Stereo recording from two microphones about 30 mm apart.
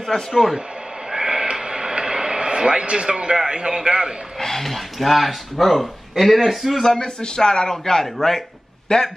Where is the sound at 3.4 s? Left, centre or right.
Right.